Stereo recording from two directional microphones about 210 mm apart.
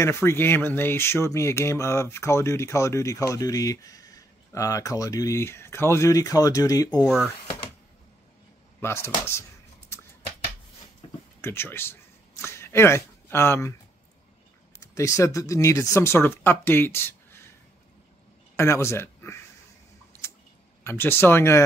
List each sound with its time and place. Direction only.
0.0 s speech: 10° left (ahead or behind)
8.8 s speech: 10° left (ahead or behind)
11.0 s a sound: 25° left (ahead or behind)
11.4 s speech: 10° left (ahead or behind)
15.0 s speech: 15° left (ahead or behind)
18.6 s speech: 10° left (ahead or behind)
20.8 s speech: 10° left (ahead or behind)